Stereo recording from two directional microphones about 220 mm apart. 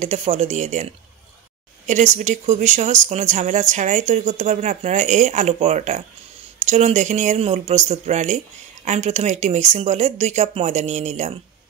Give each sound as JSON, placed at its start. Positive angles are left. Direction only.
{"t": 0.0, "sound": "speech", "side_deg": -30}
{"t": 1.9, "sound": "speech", "side_deg": -35}